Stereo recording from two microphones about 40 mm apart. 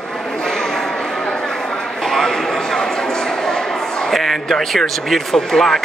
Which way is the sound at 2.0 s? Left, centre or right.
Centre.